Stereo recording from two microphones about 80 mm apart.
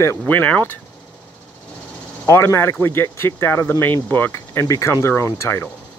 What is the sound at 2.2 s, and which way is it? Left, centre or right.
Speech, left.